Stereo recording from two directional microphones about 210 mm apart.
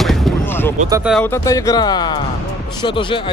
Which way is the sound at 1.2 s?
15° left (ahead or behind).